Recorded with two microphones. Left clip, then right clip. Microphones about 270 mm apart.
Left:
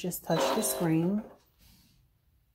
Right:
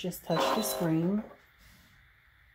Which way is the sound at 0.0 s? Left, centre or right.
Centre.